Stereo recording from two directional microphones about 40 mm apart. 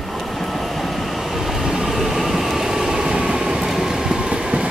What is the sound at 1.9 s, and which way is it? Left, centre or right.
Vehicle, centre.